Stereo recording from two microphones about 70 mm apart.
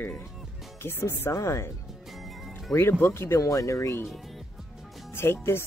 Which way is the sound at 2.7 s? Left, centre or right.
Left.